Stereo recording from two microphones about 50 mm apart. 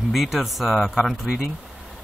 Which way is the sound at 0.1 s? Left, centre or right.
Centre.